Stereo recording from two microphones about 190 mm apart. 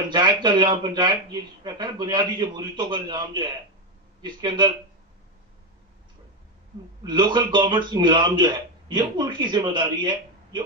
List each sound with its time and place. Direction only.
0.1 s a man's voice: 25° right (ahead or behind)
7.0 s a man's voice: 25° right (ahead or behind)